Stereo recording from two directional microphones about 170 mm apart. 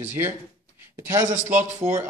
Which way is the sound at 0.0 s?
10° right (ahead or behind).